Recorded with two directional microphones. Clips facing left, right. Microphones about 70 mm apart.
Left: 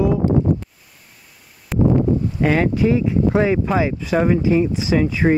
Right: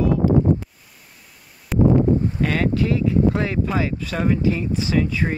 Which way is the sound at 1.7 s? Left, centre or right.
Centre.